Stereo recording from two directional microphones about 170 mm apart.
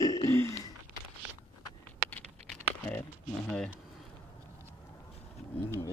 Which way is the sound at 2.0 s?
10° left (ahead or behind).